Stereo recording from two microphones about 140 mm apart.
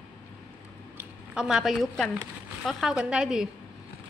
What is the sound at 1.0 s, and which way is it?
A woman's voice, 5° right (ahead or behind).